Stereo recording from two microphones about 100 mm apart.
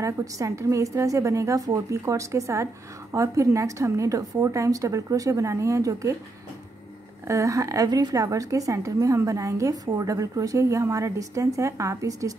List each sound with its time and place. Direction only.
0.0 s a woman's voice: 30° right (ahead or behind)
7.2 s a woman's voice: 30° right (ahead or behind)